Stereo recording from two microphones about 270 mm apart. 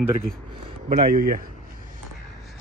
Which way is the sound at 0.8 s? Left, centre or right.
Right.